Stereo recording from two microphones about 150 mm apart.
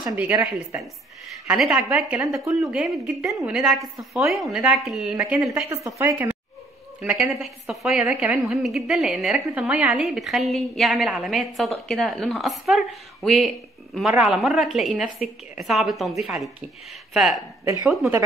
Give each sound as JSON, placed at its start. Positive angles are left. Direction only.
{"t": 0.0, "sound": "a woman's voice", "side_deg": -10}
{"t": 5.9, "sound": "a woman's voice", "side_deg": -20}
{"t": 7.0, "sound": "a woman's voice", "side_deg": 0}